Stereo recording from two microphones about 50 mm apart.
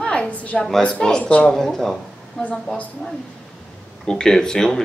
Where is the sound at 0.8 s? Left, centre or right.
Centre.